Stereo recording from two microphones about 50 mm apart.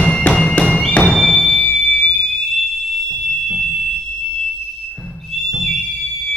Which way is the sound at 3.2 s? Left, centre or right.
Centre.